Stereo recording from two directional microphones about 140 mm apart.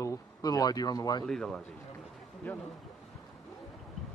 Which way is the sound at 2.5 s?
15° left (ahead or behind).